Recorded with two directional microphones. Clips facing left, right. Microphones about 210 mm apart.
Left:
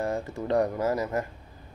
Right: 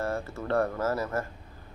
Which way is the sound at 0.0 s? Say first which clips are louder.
Left 2 dB; 15° left (ahead or behind).